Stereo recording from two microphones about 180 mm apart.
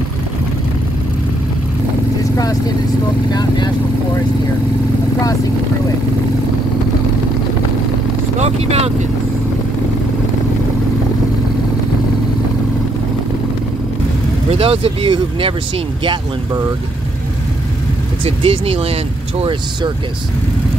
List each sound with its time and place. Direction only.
3.3 s speech: 25° left (ahead or behind)
8.4 s speech: 35° right (ahead or behind)
14.5 s speech: 30° right (ahead or behind)
18.2 s speech: 30° right (ahead or behind)